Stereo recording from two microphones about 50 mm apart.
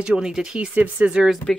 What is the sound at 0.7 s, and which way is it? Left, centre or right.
Speech, right.